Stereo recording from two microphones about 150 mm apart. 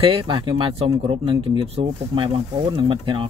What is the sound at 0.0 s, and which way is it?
Speech, 35° right (ahead or behind).